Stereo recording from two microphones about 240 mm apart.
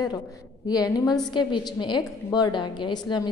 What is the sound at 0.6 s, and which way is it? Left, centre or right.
A woman's voice, centre.